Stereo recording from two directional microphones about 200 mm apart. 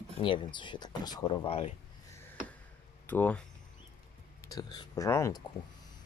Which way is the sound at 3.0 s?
10° left (ahead or behind).